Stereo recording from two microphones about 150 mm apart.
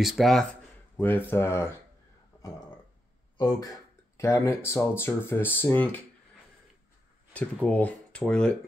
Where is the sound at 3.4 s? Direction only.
25° left (ahead or behind).